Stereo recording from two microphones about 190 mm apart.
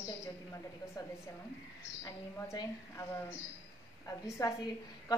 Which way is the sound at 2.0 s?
15° left (ahead or behind).